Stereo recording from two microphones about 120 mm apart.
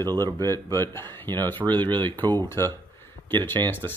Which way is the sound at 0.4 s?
20° left (ahead or behind).